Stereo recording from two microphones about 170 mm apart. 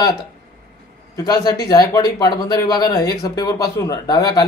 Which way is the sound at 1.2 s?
25° left (ahead or behind).